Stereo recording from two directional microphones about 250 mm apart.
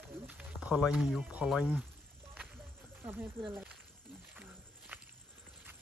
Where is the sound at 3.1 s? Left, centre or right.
Centre.